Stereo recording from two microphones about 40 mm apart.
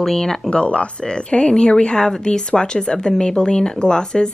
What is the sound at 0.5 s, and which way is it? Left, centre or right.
Speech, left.